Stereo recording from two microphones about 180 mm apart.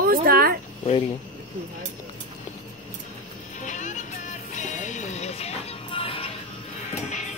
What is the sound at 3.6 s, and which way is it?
Music, 40° left (ahead or behind).